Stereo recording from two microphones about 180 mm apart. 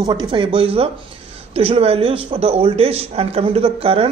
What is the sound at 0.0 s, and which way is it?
A woman's voice, 20° right (ahead or behind).